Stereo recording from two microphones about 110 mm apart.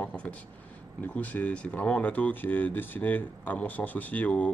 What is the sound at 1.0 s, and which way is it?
Speech, 15° left (ahead or behind).